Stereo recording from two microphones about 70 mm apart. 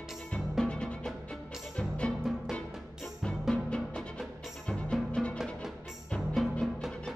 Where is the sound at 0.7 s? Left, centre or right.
Centre.